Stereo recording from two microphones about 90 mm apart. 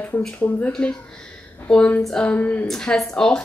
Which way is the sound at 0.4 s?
20° left (ahead or behind).